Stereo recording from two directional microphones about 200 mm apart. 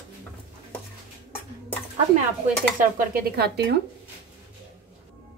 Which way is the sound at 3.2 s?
50° right (ahead or behind).